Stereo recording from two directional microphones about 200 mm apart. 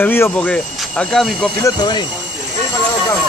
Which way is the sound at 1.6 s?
20° left (ahead or behind).